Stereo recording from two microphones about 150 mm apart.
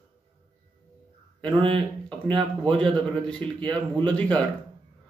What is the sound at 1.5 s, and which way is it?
Speech, 35° right (ahead or behind).